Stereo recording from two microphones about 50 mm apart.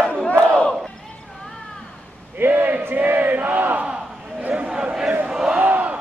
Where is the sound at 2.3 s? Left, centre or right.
Right.